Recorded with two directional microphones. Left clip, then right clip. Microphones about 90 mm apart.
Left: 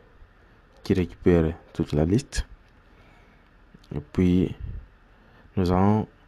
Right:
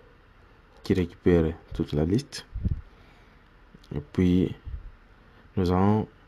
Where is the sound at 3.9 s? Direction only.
20° left (ahead or behind).